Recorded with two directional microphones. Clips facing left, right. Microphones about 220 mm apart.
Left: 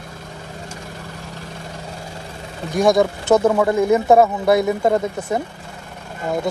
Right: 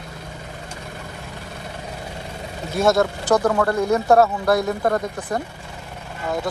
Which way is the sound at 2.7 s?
15° left (ahead or behind).